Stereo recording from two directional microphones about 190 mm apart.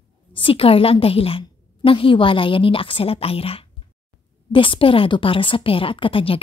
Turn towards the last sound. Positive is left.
turn(degrees=30)  # may be behind; listen again after turning